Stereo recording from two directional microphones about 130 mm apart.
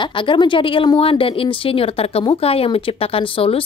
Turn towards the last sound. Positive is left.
turn(degrees=45)  # may be behind; listen again after turning